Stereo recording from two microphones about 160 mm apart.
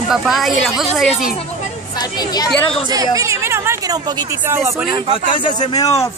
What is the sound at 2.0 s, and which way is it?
Speech, 25° left (ahead or behind).